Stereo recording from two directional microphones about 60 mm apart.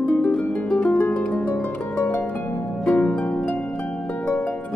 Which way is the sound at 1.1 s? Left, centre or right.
Centre.